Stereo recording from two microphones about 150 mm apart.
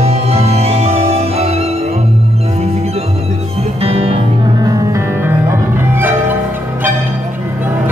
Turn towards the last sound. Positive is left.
turn(degrees=-15)  # may be behind; listen again after turning